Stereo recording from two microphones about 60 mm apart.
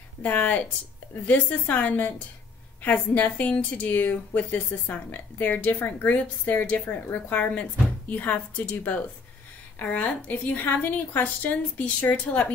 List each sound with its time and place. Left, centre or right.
0.2 s a woman's voice: left